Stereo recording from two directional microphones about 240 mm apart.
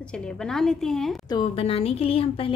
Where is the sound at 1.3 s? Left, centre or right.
Left.